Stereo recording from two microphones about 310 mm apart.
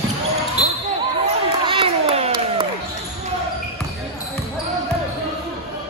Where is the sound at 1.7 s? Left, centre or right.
Centre.